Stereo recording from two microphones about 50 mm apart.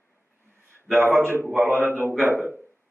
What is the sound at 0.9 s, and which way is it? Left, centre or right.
A man's voice, right.